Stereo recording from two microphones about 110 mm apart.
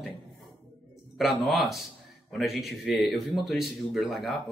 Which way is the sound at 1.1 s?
Centre (ahead or behind).